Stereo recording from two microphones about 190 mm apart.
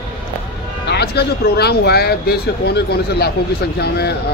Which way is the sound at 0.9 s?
60° left (ahead or behind).